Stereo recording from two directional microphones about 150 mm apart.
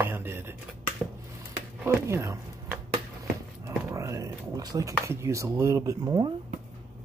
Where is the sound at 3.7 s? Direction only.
20° right (ahead or behind).